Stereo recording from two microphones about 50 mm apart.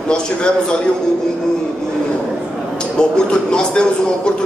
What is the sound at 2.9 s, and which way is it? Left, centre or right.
A man's voice, centre.